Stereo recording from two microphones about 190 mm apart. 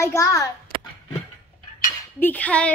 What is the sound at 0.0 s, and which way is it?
Speech, 15° left (ahead or behind).